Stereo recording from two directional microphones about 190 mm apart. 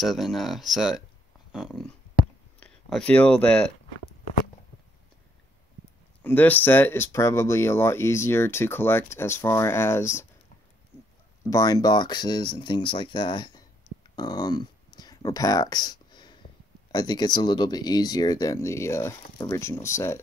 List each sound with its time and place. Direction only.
0.0 s speech: centre (ahead or behind)
6.2 s speech: 10° left (ahead or behind)
11.4 s speech: 20° left (ahead or behind)